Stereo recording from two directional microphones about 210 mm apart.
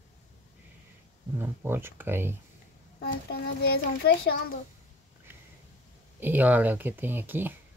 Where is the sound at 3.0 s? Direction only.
45° left (ahead or behind).